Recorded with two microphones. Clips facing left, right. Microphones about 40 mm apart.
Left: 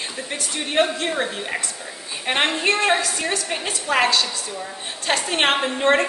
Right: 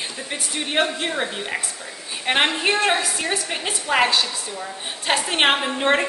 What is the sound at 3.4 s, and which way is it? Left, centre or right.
A woman's voice, centre.